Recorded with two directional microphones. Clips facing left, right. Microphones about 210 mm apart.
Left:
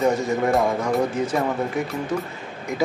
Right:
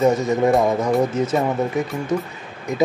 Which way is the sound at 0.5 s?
Centre (ahead or behind).